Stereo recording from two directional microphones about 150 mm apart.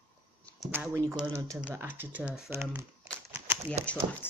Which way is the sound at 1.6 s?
10° right (ahead or behind).